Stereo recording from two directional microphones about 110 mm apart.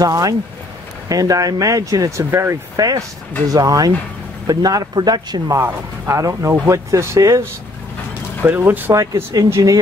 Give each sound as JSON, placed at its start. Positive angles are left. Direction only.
{"t": 0.0, "sound": "speech", "side_deg": -30}
{"t": 5.6, "sound": "speech", "side_deg": -25}
{"t": 8.5, "sound": "speech", "side_deg": -20}
{"t": 8.9, "sound": "speech", "side_deg": -30}